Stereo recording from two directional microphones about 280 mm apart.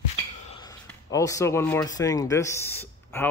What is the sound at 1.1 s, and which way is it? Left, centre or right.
Speech, centre.